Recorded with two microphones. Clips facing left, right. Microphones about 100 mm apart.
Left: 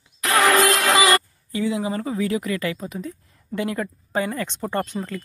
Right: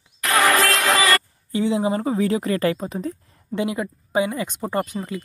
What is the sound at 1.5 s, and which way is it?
Speech, 30° right (ahead or behind).